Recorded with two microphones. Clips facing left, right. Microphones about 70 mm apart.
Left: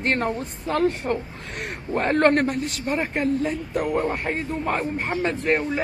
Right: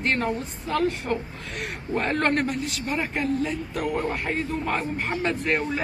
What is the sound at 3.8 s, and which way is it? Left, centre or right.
Speech, centre.